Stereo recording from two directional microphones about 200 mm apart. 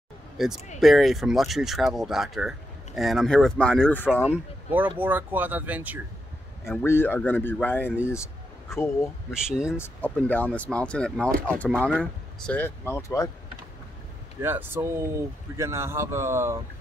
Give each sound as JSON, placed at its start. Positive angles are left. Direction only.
{"t": 0.4, "sound": "speech", "side_deg": 0}
{"t": 4.2, "sound": "speech", "side_deg": -5}
{"t": 6.7, "sound": "speech", "side_deg": 10}
{"t": 9.3, "sound": "speech", "side_deg": -5}
{"t": 9.8, "sound": "speech", "side_deg": 10}
{"t": 14.4, "sound": "speech", "side_deg": -10}